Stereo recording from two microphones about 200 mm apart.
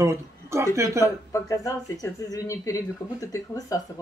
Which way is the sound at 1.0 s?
15° left (ahead or behind).